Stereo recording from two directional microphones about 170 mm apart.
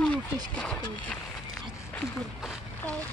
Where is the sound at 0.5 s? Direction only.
5° left (ahead or behind).